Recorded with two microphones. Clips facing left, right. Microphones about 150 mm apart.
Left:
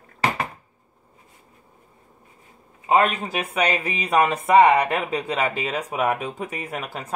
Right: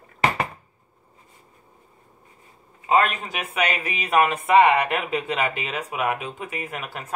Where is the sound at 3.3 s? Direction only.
30° left (ahead or behind).